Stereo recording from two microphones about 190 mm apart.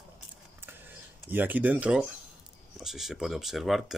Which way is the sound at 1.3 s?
10° right (ahead or behind).